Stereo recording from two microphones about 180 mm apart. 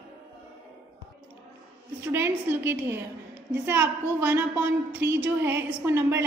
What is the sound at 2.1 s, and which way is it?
A woman's voice, 10° right (ahead or behind).